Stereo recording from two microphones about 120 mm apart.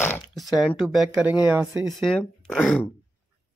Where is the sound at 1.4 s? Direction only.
15° right (ahead or behind).